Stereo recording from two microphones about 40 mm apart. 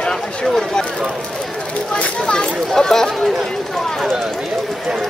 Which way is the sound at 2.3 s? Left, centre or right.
Centre.